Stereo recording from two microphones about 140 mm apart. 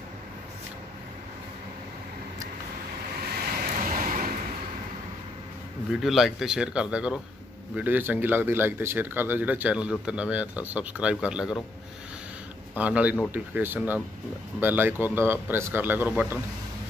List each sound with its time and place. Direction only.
3.3 s vehicle: 85° right
5.9 s speech: centre (ahead or behind)
12.7 s speech: 10° right (ahead or behind)